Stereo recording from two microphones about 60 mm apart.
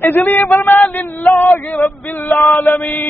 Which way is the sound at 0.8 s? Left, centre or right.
Left.